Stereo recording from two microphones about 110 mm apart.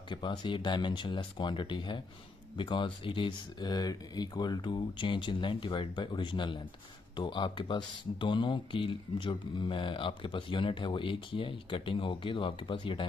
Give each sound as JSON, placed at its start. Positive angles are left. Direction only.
{"t": 0.1, "sound": "speech", "side_deg": 45}